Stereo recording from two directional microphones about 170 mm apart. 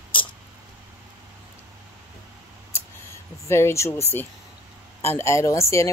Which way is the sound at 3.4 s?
15° left (ahead or behind).